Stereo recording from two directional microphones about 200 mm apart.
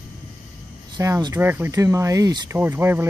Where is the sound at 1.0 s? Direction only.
15° right (ahead or behind).